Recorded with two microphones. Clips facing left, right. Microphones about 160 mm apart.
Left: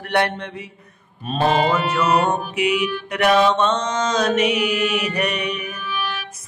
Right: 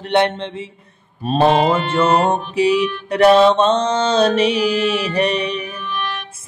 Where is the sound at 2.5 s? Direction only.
30° right (ahead or behind).